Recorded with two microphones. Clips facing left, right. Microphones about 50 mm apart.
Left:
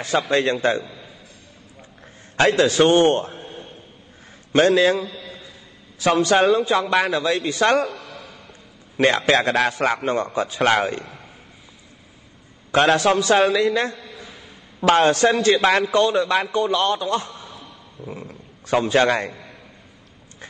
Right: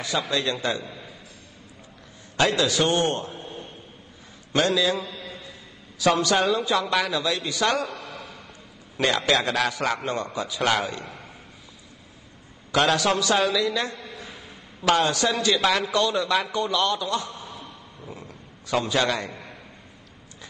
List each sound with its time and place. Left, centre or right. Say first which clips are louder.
0.3 s a man's voice: left 9 dB; left
2.3 s a man's voice: left 5 dB; left
5.9 s a man's voice: left 4 dB; left
8.9 s a man's voice: left 5 dB; left
12.7 s a man's voice: left 5 dB; left
18.0 s a man's voice: left 7 dB; left